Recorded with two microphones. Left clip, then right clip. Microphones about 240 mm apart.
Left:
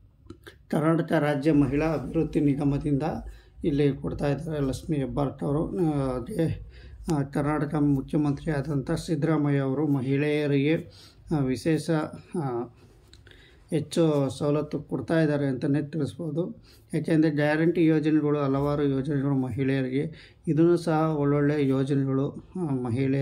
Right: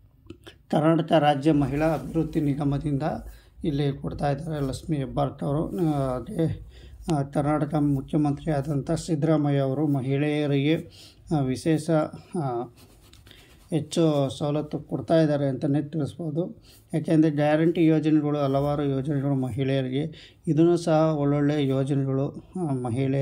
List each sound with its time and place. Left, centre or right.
0.3 s speech: centre
13.7 s speech: centre